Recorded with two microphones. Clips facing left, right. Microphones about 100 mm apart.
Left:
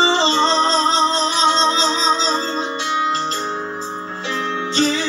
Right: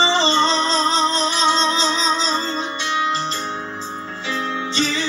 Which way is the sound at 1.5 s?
25° left (ahead or behind).